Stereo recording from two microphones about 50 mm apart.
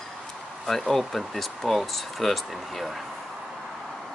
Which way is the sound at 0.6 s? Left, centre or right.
Centre.